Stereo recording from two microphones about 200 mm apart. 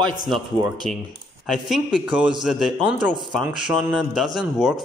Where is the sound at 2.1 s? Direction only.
5° right (ahead or behind).